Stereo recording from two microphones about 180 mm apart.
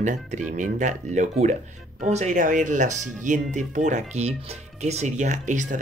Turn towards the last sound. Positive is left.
turn(degrees=-45)  # may be behind; listen again after turning